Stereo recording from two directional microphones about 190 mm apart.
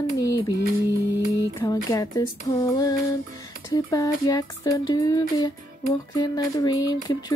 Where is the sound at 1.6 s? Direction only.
15° left (ahead or behind).